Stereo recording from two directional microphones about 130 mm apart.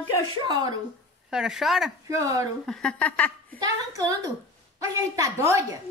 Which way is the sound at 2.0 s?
25° right (ahead or behind).